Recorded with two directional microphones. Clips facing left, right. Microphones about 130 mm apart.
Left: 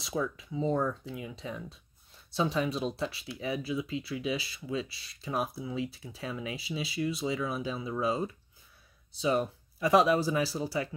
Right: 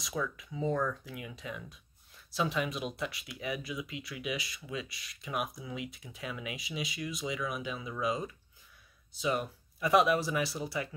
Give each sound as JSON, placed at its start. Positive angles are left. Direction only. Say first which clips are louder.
{"t": 0.0, "sound": "speech", "louder": "left 3 dB", "side_deg": 30}